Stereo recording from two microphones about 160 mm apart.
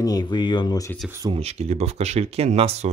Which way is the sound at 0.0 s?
25° left (ahead or behind).